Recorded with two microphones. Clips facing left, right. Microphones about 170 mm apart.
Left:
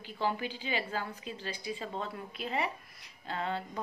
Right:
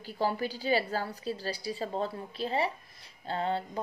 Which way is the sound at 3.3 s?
35° right (ahead or behind).